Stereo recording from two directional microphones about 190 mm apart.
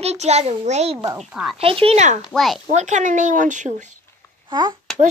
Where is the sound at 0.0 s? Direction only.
35° right (ahead or behind).